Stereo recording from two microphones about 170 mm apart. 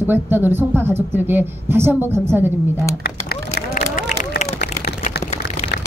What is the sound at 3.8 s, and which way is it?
Run, 40° left (ahead or behind).